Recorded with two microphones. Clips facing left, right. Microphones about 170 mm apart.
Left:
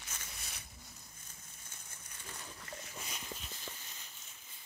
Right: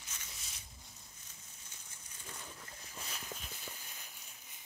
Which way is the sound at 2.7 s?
70° left (ahead or behind).